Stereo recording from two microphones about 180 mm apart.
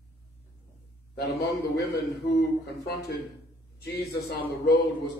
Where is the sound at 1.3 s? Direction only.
60° left (ahead or behind).